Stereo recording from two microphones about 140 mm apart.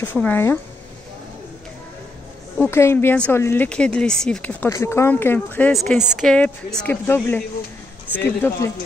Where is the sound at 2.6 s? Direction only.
15° left (ahead or behind).